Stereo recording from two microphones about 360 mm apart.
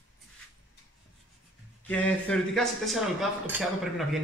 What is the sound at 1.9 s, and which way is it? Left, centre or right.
Speech, centre.